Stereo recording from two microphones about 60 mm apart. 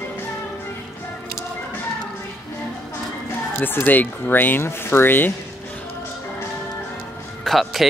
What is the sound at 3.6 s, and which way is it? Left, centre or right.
Speech, left.